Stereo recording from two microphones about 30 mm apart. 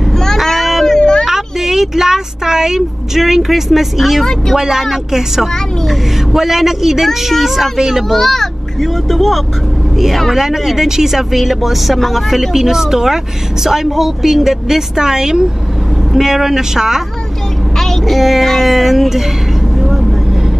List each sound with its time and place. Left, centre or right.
0.4 s a sound: centre
0.8 s a sound: left
1.2 s speech: centre
4.2 s speech: centre
4.6 s speech: centre
8.1 s a child's voice: centre
10.3 s speech: centre
15.0 s speech: right
18.0 s speech: centre
18.7 s music: centre